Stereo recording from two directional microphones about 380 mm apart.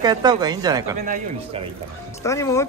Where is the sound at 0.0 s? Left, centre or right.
Centre.